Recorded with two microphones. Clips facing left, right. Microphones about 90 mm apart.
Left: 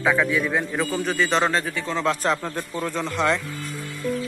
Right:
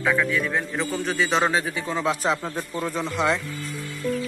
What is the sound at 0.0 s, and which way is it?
A man's voice, 15° left (ahead or behind).